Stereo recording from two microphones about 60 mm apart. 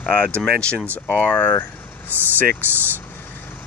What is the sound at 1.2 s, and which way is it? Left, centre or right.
Speech, left.